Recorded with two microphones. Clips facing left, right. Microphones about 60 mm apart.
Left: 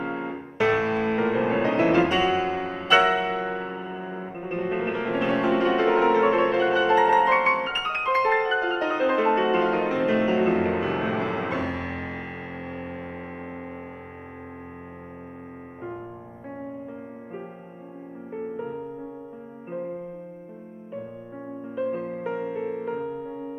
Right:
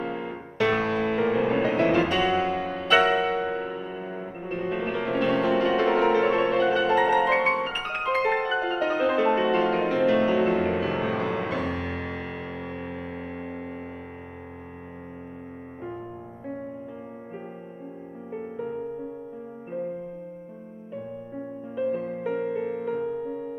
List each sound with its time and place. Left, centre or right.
0.0 s music: left
1.6 s music: centre
4.4 s music: left
4.9 s music: centre
21.7 s music: centre
23.2 s music: left